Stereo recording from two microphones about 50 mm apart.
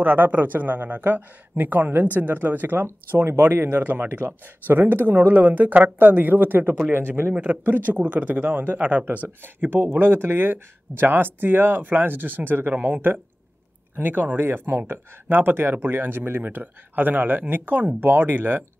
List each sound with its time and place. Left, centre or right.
0.0 s speech: right
7.3 s a man's voice: right